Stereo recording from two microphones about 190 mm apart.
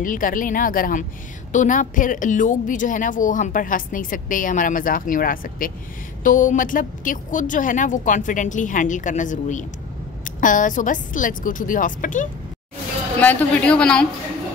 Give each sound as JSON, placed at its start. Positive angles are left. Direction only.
{"t": 0.0, "sound": "a woman's voice", "side_deg": 45}
{"t": 13.2, "sound": "a woman's voice", "side_deg": 10}